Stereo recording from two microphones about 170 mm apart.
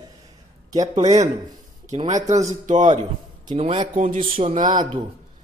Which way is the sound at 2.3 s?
45° right (ahead or behind).